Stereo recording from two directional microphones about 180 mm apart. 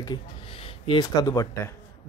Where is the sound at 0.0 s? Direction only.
25° left (ahead or behind).